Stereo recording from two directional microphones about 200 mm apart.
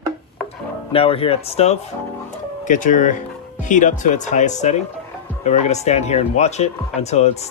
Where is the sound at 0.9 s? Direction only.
30° left (ahead or behind).